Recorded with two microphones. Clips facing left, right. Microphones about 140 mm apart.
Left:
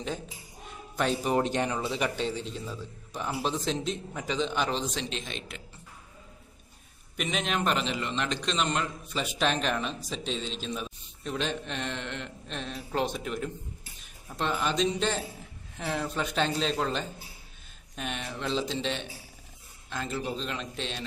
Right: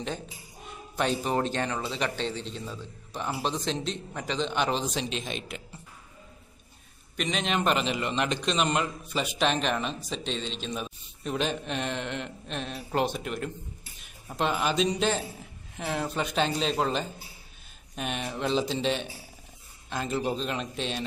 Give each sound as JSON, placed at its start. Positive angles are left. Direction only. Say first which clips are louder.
{"t": 1.2, "sound": "a man's voice", "louder": "left 1 dB", "side_deg": 15}
{"t": 7.2, "sound": "a man's voice", "louder": "right 2 dB", "side_deg": 5}
{"t": 10.8, "sound": "a man's voice", "louder": "right 2 dB", "side_deg": -10}